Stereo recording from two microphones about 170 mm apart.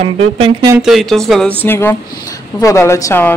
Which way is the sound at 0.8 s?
Centre (ahead or behind).